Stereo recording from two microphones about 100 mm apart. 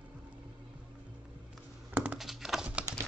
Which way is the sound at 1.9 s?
15° right (ahead or behind).